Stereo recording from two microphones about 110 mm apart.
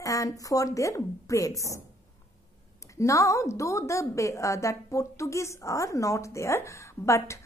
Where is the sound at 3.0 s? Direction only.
30° left (ahead or behind).